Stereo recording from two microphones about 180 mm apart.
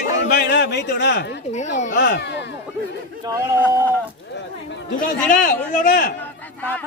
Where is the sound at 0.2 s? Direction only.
75° left (ahead or behind).